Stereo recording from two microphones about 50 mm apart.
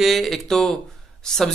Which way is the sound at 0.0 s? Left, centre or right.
Centre.